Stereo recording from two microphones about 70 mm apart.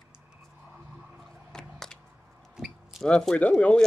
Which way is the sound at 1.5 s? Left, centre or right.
Centre.